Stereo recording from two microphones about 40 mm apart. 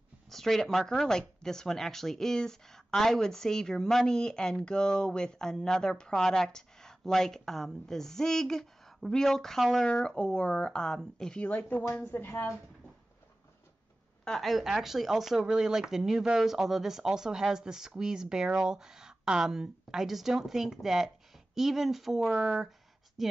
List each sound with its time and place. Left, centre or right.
0.3 s speech: centre
10.1 s speech: left
11.4 s speech: left
12.3 s speech: left
14.4 s speech: centre